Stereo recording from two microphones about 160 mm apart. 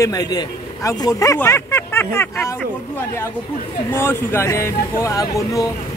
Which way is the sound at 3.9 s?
15° left (ahead or behind).